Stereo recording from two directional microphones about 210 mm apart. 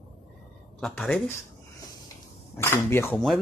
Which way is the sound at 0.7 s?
5° left (ahead or behind).